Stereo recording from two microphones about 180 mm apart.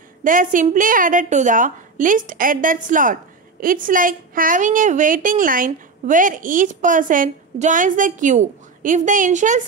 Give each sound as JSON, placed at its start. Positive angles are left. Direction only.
{"t": 0.2, "sound": "a woman's voice", "side_deg": -50}